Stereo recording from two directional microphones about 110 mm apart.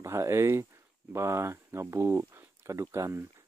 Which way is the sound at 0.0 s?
25° right (ahead or behind).